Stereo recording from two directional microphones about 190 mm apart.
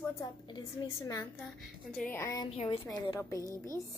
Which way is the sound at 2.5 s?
30° left (ahead or behind).